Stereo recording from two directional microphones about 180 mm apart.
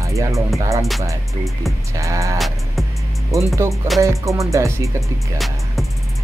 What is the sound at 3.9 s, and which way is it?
Music, 15° right (ahead or behind).